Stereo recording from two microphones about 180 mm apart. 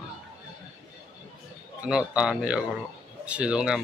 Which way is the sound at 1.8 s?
5° right (ahead or behind).